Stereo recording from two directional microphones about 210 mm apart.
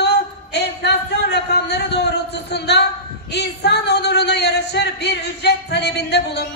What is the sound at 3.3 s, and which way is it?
Speech, 50° left (ahead or behind).